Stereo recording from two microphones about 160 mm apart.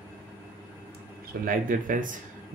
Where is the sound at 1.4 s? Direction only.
60° right (ahead or behind).